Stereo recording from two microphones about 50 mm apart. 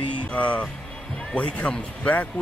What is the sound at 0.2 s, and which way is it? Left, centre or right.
Speech, left.